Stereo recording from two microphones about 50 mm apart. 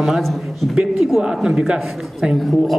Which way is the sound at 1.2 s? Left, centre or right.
Centre.